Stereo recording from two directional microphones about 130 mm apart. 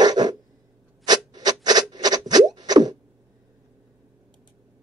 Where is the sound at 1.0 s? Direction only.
30° right (ahead or behind).